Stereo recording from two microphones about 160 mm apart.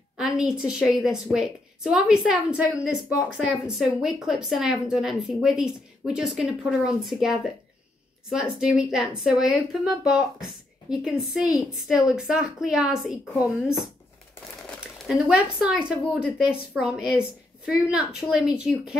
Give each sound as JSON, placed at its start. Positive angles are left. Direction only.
{"t": 0.2, "sound": "speech", "side_deg": -5}
{"t": 15.0, "sound": "speech", "side_deg": -5}